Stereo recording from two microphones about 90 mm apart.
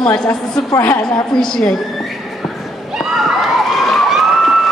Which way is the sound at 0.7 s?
25° left (ahead or behind).